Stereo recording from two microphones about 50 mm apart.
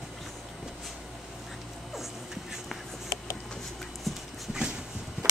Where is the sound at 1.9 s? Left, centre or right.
Centre.